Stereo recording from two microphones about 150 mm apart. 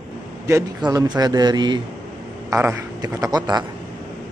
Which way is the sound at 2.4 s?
15° right (ahead or behind).